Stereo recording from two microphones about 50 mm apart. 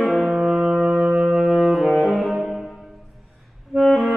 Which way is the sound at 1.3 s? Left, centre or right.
Centre.